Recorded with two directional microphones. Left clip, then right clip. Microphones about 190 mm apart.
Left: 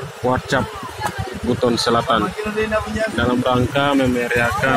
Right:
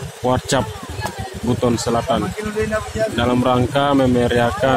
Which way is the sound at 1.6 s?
15° right (ahead or behind).